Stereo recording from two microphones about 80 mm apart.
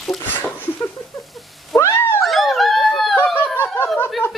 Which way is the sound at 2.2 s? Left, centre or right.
Centre.